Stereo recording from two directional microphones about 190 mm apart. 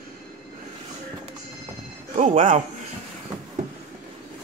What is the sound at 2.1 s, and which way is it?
Speech, 45° right (ahead or behind).